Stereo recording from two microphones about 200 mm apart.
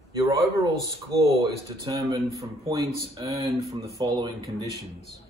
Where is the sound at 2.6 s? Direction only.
20° right (ahead or behind).